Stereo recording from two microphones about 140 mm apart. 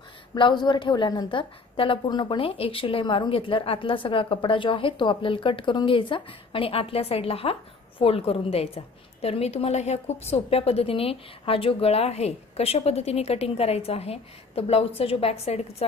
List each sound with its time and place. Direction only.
0.3 s a woman's voice: 30° left (ahead or behind)